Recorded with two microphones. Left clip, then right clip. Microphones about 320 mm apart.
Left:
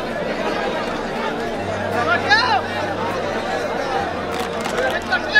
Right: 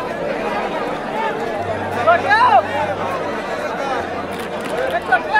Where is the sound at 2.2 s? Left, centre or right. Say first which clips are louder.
Right 4 dB; centre.